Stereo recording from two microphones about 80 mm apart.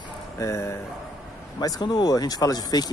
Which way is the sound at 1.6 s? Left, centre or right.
Left.